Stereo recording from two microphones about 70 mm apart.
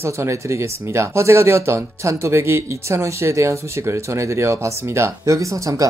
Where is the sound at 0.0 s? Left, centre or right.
Right.